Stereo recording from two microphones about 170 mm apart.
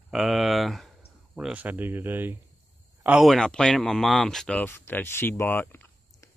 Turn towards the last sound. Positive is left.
turn(degrees=15)  # may be behind; listen again after turning